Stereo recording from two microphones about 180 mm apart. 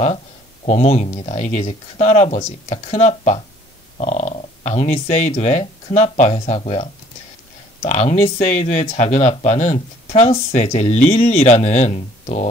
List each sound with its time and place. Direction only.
0.7 s speech: 35° left (ahead or behind)